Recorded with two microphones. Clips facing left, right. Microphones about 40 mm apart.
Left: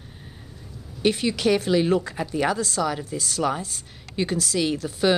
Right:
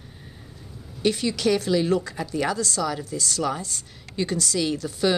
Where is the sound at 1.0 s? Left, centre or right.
Centre.